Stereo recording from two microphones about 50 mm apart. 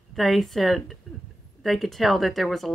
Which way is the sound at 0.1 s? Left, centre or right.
Centre.